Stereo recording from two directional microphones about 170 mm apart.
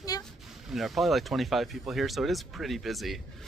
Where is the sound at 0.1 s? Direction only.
20° left (ahead or behind).